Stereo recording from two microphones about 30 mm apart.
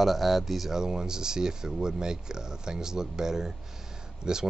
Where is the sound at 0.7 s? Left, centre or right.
Right.